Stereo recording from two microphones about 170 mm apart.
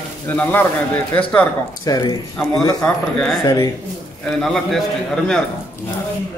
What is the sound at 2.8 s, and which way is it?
Speech, 5° left (ahead or behind).